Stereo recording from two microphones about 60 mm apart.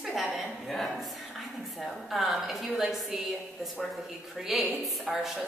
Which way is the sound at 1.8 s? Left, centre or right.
Centre.